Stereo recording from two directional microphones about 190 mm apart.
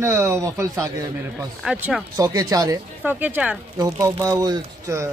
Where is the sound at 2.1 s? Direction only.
20° right (ahead or behind).